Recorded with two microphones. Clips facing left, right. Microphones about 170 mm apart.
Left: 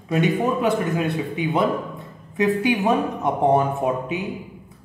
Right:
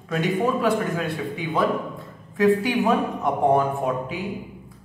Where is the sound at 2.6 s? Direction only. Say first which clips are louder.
Left 1 dB; 20° left (ahead or behind).